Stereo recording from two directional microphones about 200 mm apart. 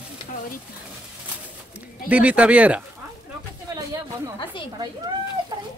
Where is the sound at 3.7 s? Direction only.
15° right (ahead or behind).